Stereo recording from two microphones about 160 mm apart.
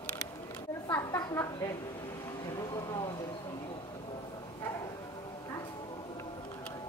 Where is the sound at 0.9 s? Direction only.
15° left (ahead or behind).